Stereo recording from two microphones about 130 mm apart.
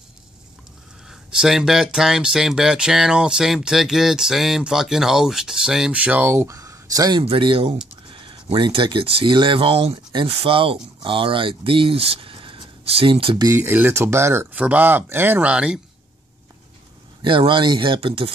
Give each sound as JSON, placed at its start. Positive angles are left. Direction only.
{"t": 1.0, "sound": "speech", "side_deg": -5}
{"t": 7.2, "sound": "speech", "side_deg": -45}
{"t": 13.5, "sound": "speech", "side_deg": -20}
{"t": 17.2, "sound": "speech", "side_deg": -40}